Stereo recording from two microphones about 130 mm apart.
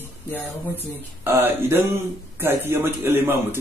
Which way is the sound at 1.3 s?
15° right (ahead or behind).